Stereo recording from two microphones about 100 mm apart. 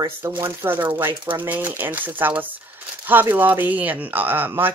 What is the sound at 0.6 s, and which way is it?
Speech, 20° right (ahead or behind).